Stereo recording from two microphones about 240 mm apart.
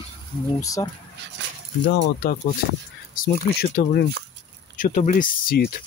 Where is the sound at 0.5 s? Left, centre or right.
Centre.